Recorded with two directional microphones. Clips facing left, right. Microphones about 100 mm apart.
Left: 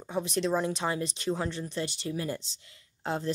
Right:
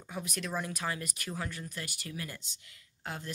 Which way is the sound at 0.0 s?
30° left (ahead or behind).